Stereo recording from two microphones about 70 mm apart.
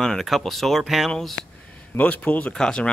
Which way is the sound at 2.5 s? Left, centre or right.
Centre.